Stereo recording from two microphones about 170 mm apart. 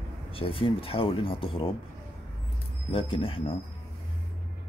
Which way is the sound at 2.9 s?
35° left (ahead or behind).